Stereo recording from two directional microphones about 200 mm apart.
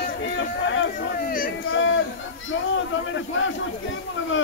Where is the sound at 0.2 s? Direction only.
70° left (ahead or behind).